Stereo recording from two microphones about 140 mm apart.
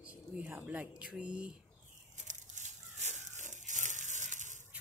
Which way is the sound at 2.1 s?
60° right (ahead or behind).